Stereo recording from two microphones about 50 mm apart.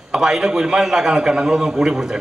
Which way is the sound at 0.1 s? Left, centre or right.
Centre.